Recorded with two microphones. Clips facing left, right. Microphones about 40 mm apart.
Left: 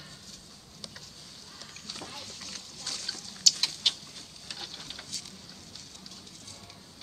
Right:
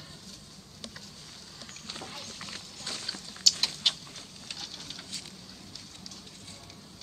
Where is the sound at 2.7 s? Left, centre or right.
Right.